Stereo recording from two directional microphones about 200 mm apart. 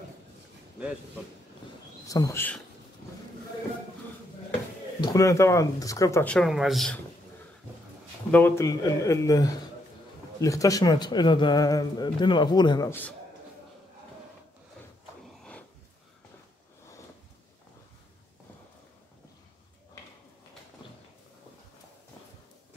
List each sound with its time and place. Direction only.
2.0 s speech: 15° left (ahead or behind)
5.0 s speech: 15° left (ahead or behind); by 7.0 s centre (ahead or behind)
8.3 s a man's voice: 10° left (ahead or behind)